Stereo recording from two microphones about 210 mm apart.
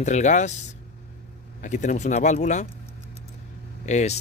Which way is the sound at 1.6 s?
35° left (ahead or behind).